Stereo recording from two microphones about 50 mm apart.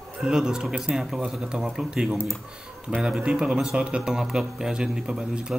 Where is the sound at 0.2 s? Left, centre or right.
Centre.